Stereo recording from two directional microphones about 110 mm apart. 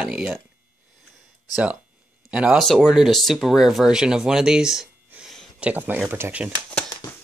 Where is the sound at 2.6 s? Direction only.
Centre (ahead or behind).